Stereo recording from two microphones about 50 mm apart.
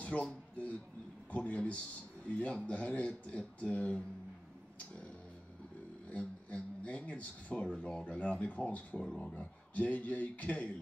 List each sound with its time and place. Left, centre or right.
0.2 s speech: left
4.7 s a sound: left
6.0 s speech: left
7.6 s speech: centre
8.0 s speech: left